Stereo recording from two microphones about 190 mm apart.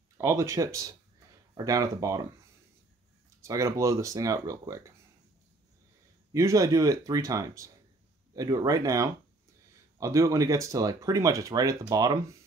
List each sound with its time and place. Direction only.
0.2 s speech: 15° right (ahead or behind)
3.4 s speech: 15° right (ahead or behind)
6.3 s speech: 15° right (ahead or behind)